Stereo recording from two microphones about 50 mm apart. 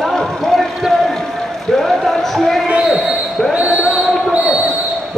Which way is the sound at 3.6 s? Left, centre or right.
Right.